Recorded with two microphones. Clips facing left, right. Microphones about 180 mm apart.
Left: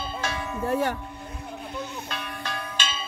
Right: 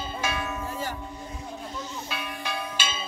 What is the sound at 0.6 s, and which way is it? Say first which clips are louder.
Speech: left 8 dB; 65° left (ahead or behind).